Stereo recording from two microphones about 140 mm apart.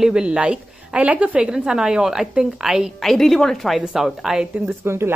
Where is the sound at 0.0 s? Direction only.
5° right (ahead or behind).